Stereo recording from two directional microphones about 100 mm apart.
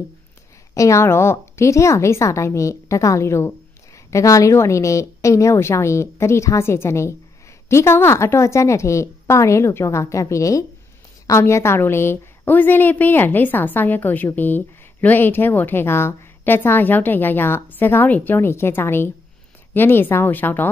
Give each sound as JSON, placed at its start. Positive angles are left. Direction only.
{"t": 0.7, "sound": "a woman's voice", "side_deg": 30}